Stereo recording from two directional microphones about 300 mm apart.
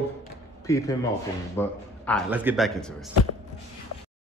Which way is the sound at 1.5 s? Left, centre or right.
Centre.